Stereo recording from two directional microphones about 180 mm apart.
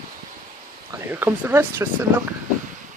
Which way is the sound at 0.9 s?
15° right (ahead or behind).